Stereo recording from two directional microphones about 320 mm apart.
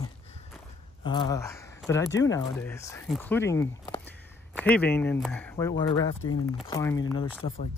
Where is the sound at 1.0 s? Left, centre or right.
Centre.